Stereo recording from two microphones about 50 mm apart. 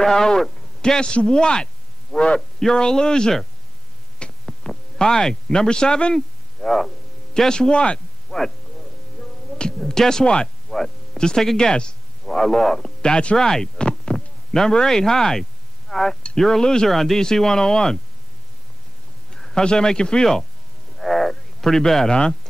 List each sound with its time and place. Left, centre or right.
0.0 s speech: centre
4.2 s hum: centre
4.6 s speech: centre
6.1 s a sound: centre
7.3 s speech: centre
8.3 s music: centre
9.8 s speech: centre
13.0 s speech: centre
19.3 s speech: centre
20.9 s speech: centre